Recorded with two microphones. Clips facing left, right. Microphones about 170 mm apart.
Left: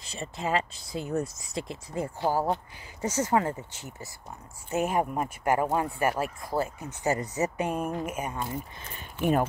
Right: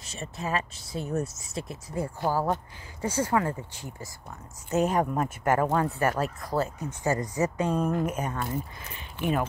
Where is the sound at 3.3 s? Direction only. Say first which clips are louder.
Left 1 dB; 30° left (ahead or behind).